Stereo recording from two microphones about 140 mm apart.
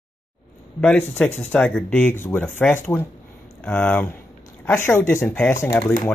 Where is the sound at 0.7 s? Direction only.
10° left (ahead or behind).